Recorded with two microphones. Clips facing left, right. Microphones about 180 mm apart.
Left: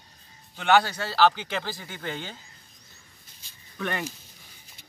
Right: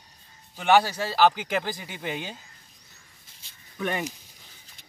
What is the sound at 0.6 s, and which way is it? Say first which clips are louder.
Speech: right 1 dB; 10° right (ahead or behind).